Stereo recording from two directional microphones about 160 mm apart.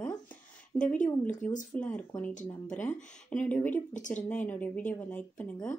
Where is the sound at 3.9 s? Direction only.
50° left (ahead or behind).